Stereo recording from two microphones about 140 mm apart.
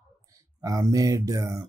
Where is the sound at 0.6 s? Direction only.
25° right (ahead or behind).